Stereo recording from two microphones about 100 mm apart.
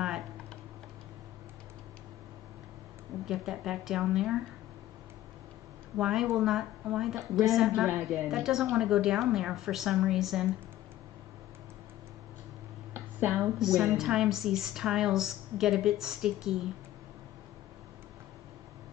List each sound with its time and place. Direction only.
3.3 s a woman's voice: 5° right (ahead or behind)
5.9 s a woman's voice: 5° right (ahead or behind)
12.9 s a sound: 25° right (ahead or behind)
13.4 s a woman's voice: 5° right (ahead or behind)